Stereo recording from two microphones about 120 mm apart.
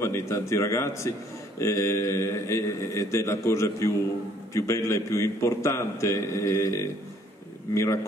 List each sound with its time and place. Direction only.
0.0 s a man's voice: 25° left (ahead or behind)